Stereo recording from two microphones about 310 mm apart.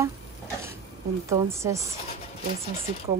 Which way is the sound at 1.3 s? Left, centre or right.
Centre.